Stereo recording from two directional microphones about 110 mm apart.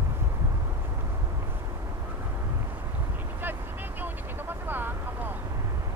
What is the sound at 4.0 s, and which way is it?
Vehicle, 20° right (ahead or behind).